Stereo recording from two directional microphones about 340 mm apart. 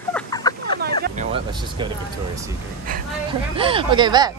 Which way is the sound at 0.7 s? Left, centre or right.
Right.